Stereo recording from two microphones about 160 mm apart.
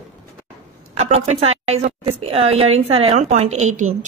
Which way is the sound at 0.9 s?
40° right (ahead or behind).